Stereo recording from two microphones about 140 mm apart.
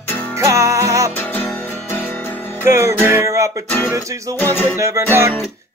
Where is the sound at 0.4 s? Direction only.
20° right (ahead or behind).